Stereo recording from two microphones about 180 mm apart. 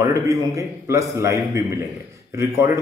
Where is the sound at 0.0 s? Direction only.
15° right (ahead or behind).